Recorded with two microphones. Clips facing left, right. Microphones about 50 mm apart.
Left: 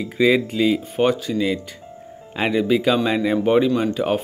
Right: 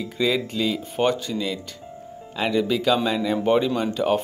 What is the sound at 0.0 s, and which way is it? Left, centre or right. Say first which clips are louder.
Speech: left 6 dB; centre.